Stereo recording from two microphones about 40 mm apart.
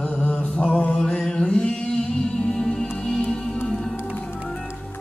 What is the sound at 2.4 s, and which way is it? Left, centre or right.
Music, left.